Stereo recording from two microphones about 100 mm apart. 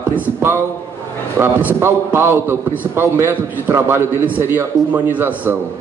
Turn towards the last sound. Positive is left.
turn(degrees=-20)  # may be behind; listen again after turning